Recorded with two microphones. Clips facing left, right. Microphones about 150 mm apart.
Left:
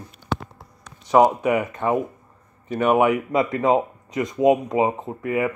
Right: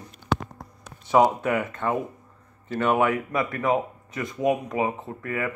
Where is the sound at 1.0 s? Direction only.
15° left (ahead or behind).